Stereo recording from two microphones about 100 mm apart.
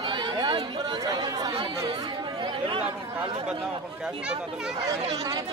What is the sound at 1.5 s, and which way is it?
Chatter, 60° right (ahead or behind).